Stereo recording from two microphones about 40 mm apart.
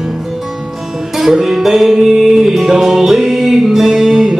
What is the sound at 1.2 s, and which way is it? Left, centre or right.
Music, centre.